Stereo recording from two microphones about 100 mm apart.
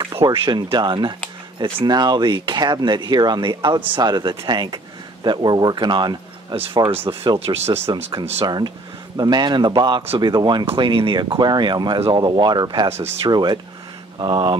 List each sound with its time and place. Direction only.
0.0 s speech: 60° right (ahead or behind)
0.6 s speech: 45° right (ahead or behind)
6.5 s speech: 70° right (ahead or behind)
6.9 s speech: 20° right (ahead or behind)
7.3 s speech: 90° right
7.9 s speech: 45° right (ahead or behind)
12.8 s speech: 90° right
13.3 s speech: 45° right (ahead or behind)